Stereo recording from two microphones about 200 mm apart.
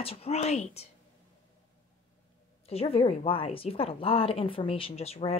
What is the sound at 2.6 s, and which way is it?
A woman's voice, 30° left (ahead or behind).